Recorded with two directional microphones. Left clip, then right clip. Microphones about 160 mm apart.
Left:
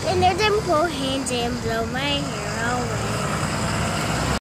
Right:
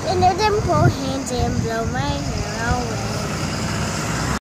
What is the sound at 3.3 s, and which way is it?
Vehicle, 45° left (ahead or behind).